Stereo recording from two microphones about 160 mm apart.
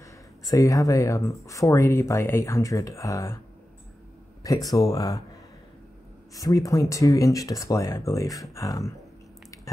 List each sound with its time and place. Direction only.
0.0 s speech: 20° left (ahead or behind)
4.4 s speech: 20° left (ahead or behind)
6.3 s speech: 20° left (ahead or behind)